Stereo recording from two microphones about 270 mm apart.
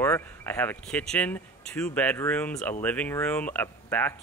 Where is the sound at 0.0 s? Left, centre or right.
Centre.